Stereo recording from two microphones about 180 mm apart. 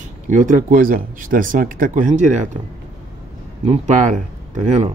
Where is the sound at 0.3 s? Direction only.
45° right (ahead or behind).